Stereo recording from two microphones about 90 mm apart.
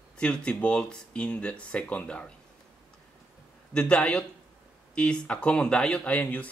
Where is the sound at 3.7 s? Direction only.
10° left (ahead or behind).